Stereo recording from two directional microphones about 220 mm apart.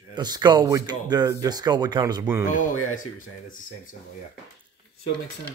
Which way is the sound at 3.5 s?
35° left (ahead or behind).